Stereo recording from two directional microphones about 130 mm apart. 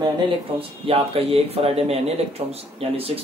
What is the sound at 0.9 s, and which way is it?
Speech, 50° right (ahead or behind).